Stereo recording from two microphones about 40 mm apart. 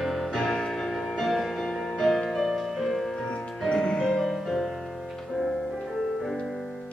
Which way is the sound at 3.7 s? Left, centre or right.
Centre.